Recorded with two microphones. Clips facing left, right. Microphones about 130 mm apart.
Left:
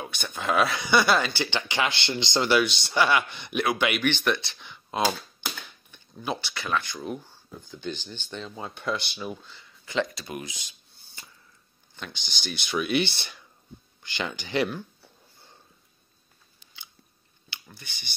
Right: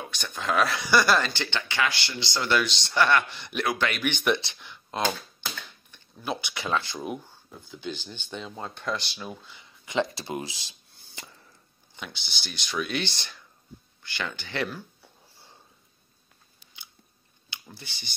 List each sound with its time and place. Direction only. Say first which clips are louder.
0.0 s speech: left 1 dB; 5° left (ahead or behind); by 2.5 s 20° left (ahead or behind)
2.5 s speech: left 1 dB; 5° left (ahead or behind)
4.0 s speech: even; 10° right (ahead or behind)
4.6 s a sound: left 3 dB; centre (ahead or behind)
6.4 s speech: right 1 dB; 20° right (ahead or behind)
7.6 s speech: left 1 dB; 5° right (ahead or behind)
8.5 s speech: left 2 dB; 5° left (ahead or behind)
9.5 s speech: even; 20° right (ahead or behind)
11.2 s a sound: right 4 dB; 90° right
12.0 s speech: left 2 dB; 5° right (ahead or behind)
14.0 s speech: left 2 dB; 20° left (ahead or behind)
17.5 s speech: right 2 dB; 25° right (ahead or behind)